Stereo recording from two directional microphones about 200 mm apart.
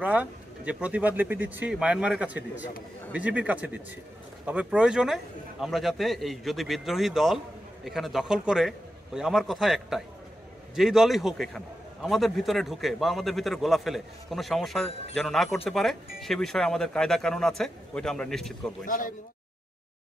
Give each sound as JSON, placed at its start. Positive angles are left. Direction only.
{"t": 0.0, "sound": "a man's voice", "side_deg": -5}
{"t": 18.9, "sound": "speech", "side_deg": 40}